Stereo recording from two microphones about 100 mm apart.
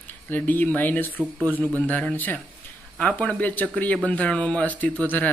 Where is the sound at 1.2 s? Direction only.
15° right (ahead or behind).